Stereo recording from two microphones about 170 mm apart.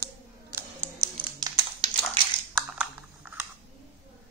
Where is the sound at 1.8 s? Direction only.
30° right (ahead or behind).